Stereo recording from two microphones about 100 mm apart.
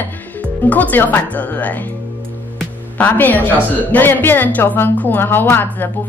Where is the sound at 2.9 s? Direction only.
20° left (ahead or behind).